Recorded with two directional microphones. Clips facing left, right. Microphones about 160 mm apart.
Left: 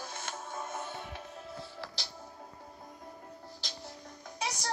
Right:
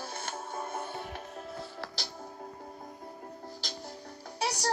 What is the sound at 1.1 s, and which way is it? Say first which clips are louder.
Music: right 3 dB; 45° right (ahead or behind).